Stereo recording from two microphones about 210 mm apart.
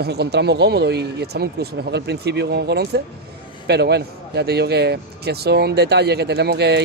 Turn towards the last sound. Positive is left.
turn(degrees=-50)  # may be behind; listen again after turning